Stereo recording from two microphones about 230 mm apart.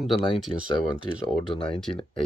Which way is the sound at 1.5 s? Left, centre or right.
Left.